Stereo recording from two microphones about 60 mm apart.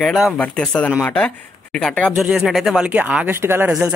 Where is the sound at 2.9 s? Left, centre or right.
Right.